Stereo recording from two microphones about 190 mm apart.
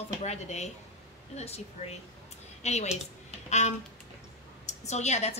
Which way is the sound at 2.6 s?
35° left (ahead or behind).